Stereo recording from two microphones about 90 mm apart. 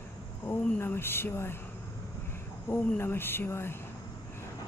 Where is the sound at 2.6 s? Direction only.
25° left (ahead or behind).